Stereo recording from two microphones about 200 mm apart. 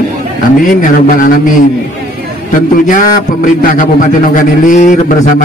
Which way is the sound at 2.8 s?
45° left (ahead or behind).